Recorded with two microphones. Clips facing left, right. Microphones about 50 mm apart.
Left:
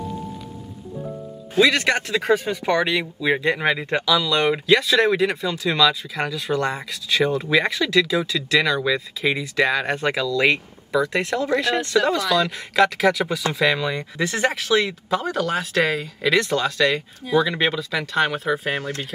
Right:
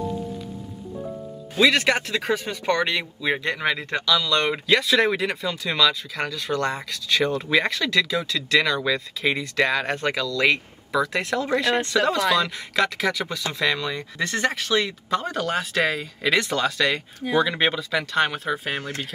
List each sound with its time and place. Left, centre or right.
1.6 s speech: centre
18.8 s speech: centre